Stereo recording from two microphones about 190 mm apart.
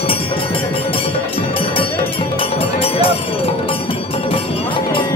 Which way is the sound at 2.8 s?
30° left (ahead or behind).